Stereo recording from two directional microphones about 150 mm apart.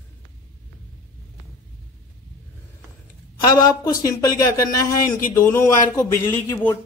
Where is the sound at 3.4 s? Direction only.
25° left (ahead or behind).